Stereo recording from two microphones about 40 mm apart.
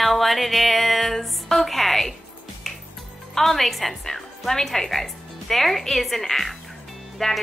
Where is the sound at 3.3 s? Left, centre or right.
Centre.